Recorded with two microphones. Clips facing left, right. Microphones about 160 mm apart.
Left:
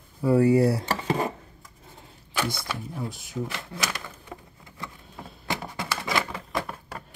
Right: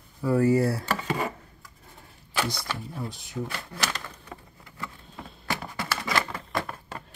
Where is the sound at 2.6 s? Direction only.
15° left (ahead or behind).